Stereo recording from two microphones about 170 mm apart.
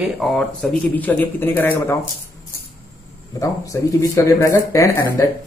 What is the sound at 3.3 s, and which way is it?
Speech, 20° left (ahead or behind).